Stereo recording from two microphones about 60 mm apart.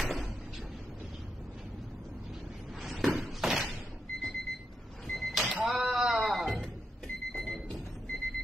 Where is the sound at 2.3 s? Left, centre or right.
Centre.